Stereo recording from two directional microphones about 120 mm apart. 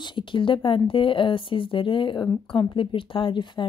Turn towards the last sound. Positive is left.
turn(degrees=45)  # may be behind; listen again after turning